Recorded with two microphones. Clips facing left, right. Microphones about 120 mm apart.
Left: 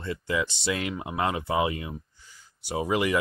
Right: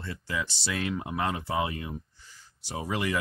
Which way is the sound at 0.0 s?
20° left (ahead or behind).